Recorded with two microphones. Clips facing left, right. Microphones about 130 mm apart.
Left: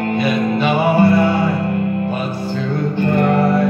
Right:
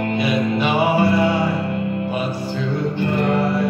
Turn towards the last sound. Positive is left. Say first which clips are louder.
# left 4 dB
turn(degrees=50)  # may be behind; listen again after turning